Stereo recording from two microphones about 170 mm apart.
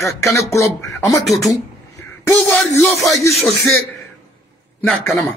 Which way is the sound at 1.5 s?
15° left (ahead or behind).